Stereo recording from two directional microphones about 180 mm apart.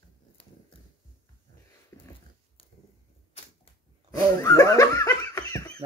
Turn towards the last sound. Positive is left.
turn(degrees=20)  # may be behind; listen again after turning